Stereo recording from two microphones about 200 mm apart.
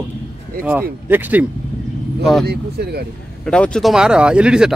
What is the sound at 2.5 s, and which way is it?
Speech, 50° right (ahead or behind).